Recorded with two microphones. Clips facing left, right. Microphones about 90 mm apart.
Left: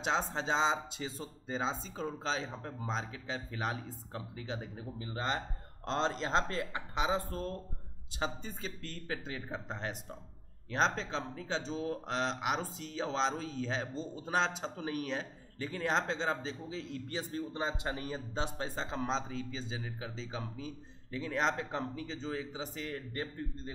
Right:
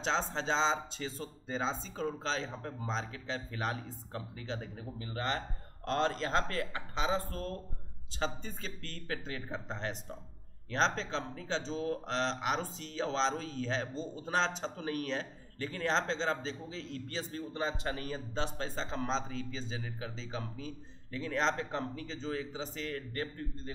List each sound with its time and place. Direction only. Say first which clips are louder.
0.0 s speech: even; 10° left (ahead or behind)